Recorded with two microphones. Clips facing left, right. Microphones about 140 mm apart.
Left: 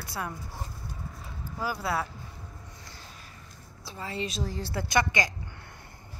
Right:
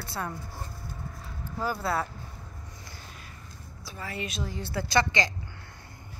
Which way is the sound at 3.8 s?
25° left (ahead or behind).